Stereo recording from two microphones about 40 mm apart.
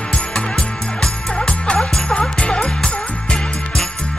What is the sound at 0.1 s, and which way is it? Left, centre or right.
Music, left.